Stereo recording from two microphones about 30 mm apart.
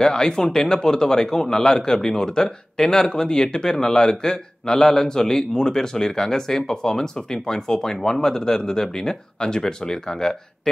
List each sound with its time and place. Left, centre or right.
0.0 s speech: left
2.8 s speech: centre
3.1 s speech: left